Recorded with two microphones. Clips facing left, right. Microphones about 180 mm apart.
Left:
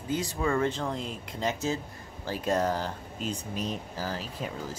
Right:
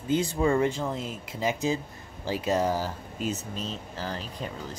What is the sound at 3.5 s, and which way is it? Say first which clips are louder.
Speech: left 2 dB; 10° left (ahead or behind).